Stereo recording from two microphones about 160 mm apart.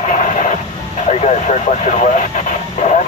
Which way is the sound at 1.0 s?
45° left (ahead or behind).